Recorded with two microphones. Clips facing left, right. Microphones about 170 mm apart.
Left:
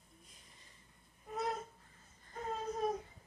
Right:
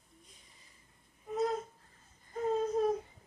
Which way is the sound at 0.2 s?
Centre (ahead or behind).